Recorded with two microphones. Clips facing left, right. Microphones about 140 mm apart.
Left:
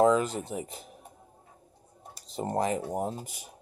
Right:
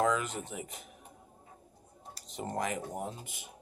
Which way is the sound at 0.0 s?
35° left (ahead or behind).